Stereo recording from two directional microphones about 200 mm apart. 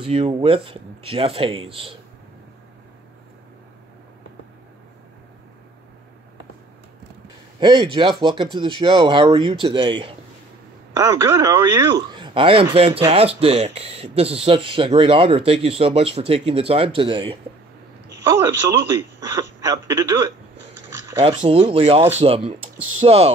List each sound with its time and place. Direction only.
0.0 s speech: 25° right (ahead or behind)
7.6 s speech: 20° right (ahead or behind)
18.2 s speech: 15° right (ahead or behind)
21.2 s speech: 25° right (ahead or behind)